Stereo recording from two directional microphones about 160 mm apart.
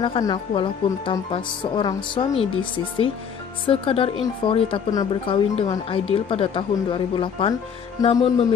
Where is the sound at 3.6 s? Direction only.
35° left (ahead or behind).